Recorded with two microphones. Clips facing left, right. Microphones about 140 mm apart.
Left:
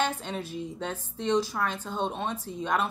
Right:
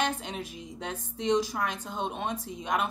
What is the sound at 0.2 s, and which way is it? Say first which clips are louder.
Speech: left 4 dB; 15° right (ahead or behind).